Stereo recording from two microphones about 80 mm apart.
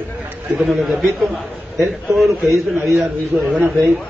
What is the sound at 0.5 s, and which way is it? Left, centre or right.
A man's voice, centre.